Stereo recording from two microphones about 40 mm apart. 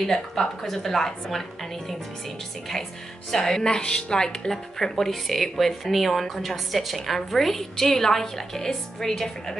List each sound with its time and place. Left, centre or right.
0.0 s a woman's voice: centre
3.3 s a woman's voice: centre
4.7 s a woman's voice: centre